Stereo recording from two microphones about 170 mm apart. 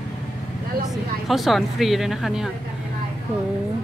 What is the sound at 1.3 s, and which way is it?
Speech, centre (ahead or behind).